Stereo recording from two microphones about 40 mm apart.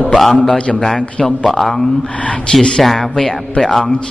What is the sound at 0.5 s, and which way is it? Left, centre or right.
Mantra, left.